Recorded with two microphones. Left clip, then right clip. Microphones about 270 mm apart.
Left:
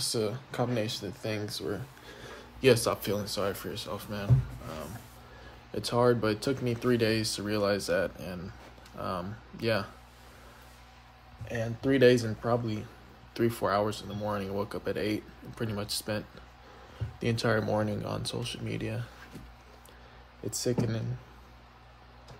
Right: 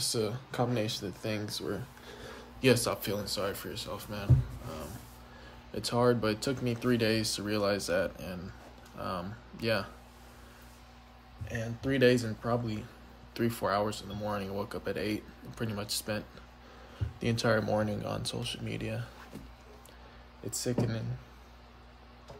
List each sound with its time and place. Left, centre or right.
0.0 s speech: centre
5.8 s speech: centre
11.4 s speech: centre
20.4 s speech: centre